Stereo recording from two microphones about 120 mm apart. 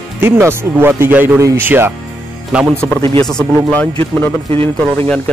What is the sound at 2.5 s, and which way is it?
Speech, 5° right (ahead or behind).